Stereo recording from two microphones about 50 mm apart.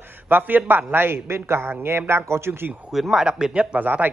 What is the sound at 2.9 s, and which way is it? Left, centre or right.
Speech, centre.